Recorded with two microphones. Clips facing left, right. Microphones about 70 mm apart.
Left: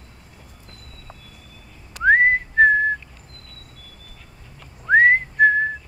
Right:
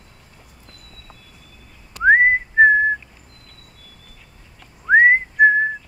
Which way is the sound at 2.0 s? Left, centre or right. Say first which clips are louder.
Right 2 dB; centre.